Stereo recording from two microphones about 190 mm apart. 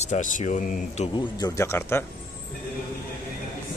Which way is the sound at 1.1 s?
20° left (ahead or behind).